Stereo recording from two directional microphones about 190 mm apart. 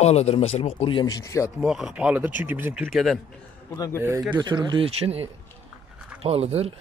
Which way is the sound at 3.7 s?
15° left (ahead or behind).